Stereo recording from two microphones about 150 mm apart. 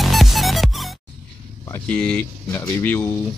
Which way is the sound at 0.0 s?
Centre (ahead or behind).